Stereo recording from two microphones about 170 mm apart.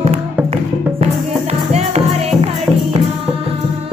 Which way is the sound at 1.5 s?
40° right (ahead or behind).